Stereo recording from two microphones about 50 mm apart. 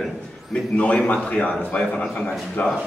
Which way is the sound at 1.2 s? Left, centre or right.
Left.